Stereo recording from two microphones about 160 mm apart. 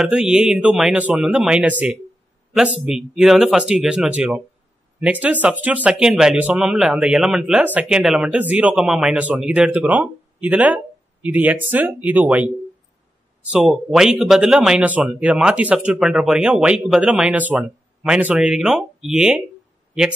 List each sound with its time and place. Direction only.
0.0 s speech: 5° right (ahead or behind)
13.9 s speech: 5° right (ahead or behind)